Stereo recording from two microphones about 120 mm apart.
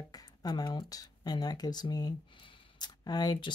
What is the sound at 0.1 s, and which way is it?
Speech, 35° left (ahead or behind).